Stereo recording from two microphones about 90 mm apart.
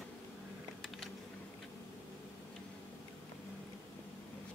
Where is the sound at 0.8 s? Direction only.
5° left (ahead or behind).